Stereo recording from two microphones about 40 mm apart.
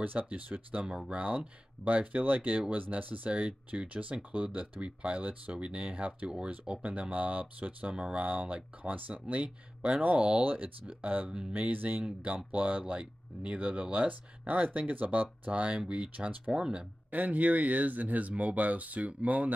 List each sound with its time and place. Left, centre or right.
0.0 s speech: right
0.8 s speech: right
1.1 s speech: right
3.3 s speech: right
10.4 s speech: right
17.1 s speech: right